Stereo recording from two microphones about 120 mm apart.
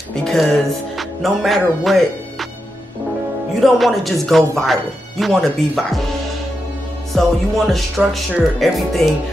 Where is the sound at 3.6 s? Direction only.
Centre (ahead or behind).